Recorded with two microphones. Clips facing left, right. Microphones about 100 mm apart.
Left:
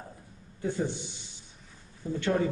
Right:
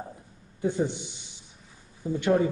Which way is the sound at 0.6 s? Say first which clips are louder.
Right 4 dB; 20° right (ahead or behind).